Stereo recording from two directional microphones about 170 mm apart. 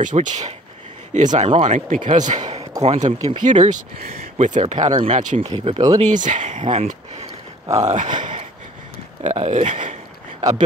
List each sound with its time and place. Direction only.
0.0 s speech: 45° right (ahead or behind)
5.5 s speech: 30° right (ahead or behind)
5.9 s speech: 45° right (ahead or behind)